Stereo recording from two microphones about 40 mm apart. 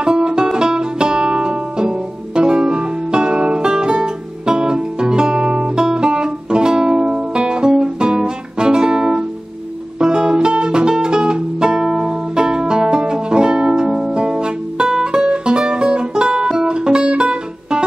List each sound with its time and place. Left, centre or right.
0.0 s music: right